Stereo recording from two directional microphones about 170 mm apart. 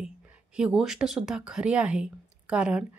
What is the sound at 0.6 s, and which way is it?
Speech, 5° right (ahead or behind).